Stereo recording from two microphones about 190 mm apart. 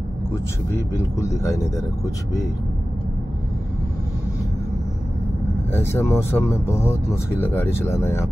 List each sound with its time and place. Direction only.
0.9 s speech: 15° left (ahead or behind)
5.7 s speech: 15° left (ahead or behind)